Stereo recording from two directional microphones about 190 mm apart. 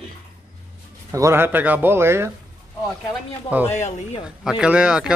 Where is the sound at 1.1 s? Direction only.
15° right (ahead or behind).